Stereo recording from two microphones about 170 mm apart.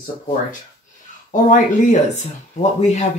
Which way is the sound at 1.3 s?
45° left (ahead or behind).